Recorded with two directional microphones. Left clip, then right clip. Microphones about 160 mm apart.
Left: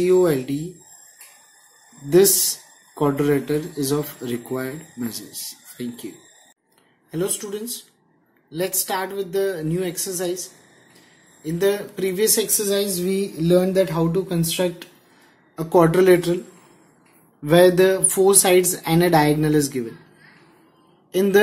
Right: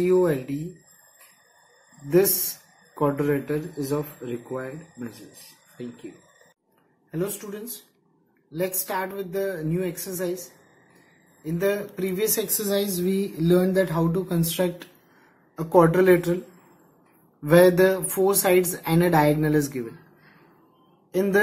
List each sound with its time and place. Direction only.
0.0 s speech: 15° left (ahead or behind)
3.0 s speech: 20° left (ahead or behind)
4.2 s speech: 35° left (ahead or behind)
8.5 s speech: 10° left (ahead or behind)
11.4 s speech: 10° left (ahead or behind)
12.5 s speech: centre (ahead or behind)
15.5 s speech: 10° left (ahead or behind)
17.4 s speech: centre (ahead or behind)
21.1 s a man's voice: 5° left (ahead or behind)